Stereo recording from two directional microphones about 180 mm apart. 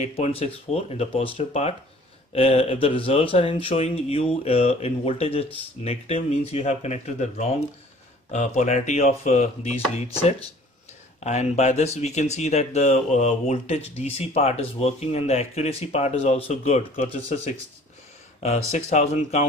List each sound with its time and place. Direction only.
0.0 s speech: 35° left (ahead or behind)
11.1 s speech: 40° left (ahead or behind)
18.7 s speech: 40° left (ahead or behind)